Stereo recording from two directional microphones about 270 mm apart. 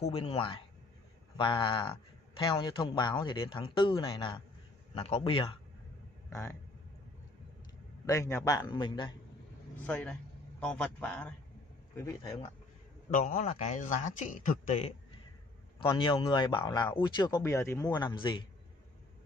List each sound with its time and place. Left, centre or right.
0.0 s a man's voice: left
8.1 s speech: centre
9.8 s a man's voice: centre
13.1 s a man's voice: left